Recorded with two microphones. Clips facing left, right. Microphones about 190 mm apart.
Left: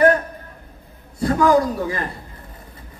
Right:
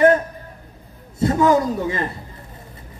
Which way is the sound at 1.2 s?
20° right (ahead or behind).